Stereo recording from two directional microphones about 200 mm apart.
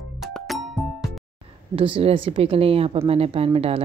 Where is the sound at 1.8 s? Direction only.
25° right (ahead or behind).